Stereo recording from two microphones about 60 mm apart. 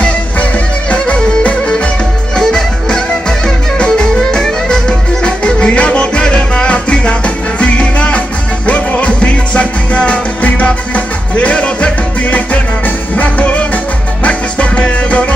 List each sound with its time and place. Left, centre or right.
0.0 s music: centre